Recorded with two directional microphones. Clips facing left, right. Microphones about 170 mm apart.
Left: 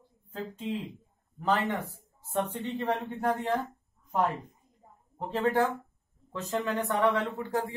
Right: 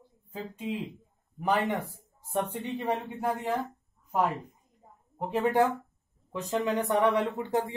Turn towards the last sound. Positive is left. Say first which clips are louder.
# right 2 dB
turn(degrees=-20)  # may be behind; listen again after turning